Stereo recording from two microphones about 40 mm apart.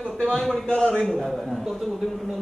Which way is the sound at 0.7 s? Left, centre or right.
Left.